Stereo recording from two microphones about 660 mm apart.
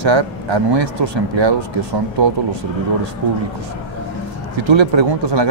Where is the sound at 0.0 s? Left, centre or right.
Right.